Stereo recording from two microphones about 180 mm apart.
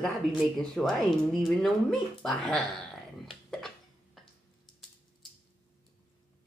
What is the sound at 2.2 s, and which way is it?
Speech, 5° left (ahead or behind).